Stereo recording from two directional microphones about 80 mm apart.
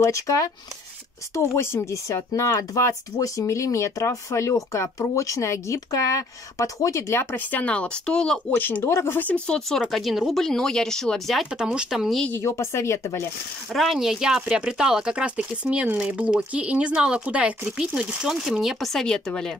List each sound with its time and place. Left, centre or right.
0.0 s speech: left
7.5 s speech: centre
8.5 s speech: left
9.7 s speech: centre
11.5 s speech: centre
12.4 s speech: left
13.7 s speech: centre